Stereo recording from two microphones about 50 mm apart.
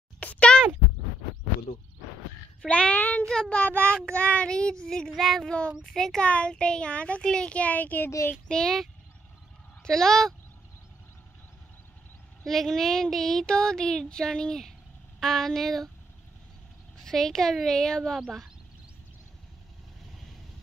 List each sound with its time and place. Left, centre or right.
0.2 s a sound: left
2.6 s a sound: left
3.4 s a child's voice: left
3.9 s a child's voice: left
5.1 s speech: centre
6.2 s a child's voice: left
7.5 s a child's voice: left
8.5 s speech: centre
9.8 s speech: centre
12.4 s speech: centre
17.0 s a child's voice: centre
18.1 s speech: centre